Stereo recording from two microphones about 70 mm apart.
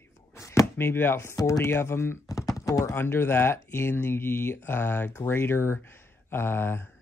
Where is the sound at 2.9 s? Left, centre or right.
Left.